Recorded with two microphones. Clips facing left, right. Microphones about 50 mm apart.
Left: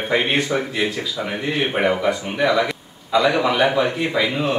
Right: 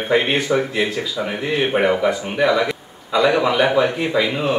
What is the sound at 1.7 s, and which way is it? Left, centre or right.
A man's voice, centre.